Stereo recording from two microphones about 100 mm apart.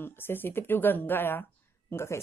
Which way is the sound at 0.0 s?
20° left (ahead or behind).